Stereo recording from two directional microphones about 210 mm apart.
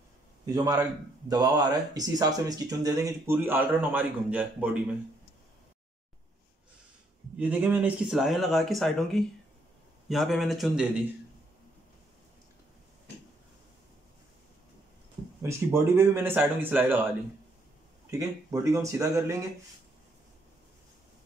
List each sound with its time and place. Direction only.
0.5 s speech: 15° right (ahead or behind)
7.3 s speech: 5° right (ahead or behind)
15.4 s speech: 10° right (ahead or behind)
18.1 s speech: 15° right (ahead or behind)